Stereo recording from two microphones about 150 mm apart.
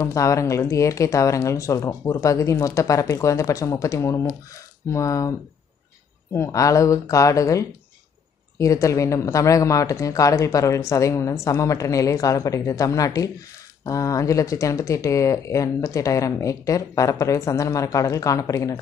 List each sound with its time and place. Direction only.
0.0 s speech: 20° left (ahead or behind)
6.3 s speech: 20° left (ahead or behind)